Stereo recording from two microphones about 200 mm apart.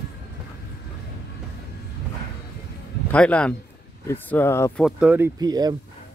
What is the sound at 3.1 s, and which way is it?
Speech, 5° left (ahead or behind).